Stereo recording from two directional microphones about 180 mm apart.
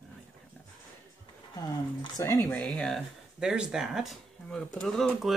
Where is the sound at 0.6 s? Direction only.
10° left (ahead or behind).